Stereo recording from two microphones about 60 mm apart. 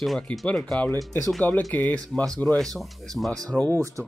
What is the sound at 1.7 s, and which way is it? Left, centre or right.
Speech, left.